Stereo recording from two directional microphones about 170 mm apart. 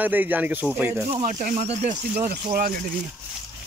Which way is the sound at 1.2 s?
45° right (ahead or behind).